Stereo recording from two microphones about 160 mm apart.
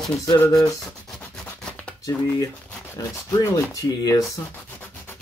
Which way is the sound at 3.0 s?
25° left (ahead or behind).